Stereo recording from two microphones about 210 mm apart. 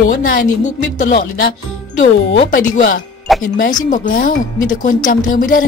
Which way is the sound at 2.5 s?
40° left (ahead or behind).